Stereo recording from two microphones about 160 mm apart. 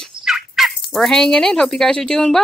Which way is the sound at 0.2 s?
Centre (ahead or behind).